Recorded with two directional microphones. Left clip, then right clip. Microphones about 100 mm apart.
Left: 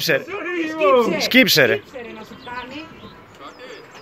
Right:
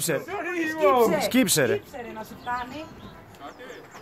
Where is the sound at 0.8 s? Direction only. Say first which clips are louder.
Left 4 dB; 10° right (ahead or behind).